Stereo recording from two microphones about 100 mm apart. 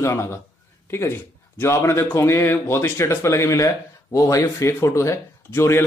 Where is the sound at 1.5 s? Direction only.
30° left (ahead or behind).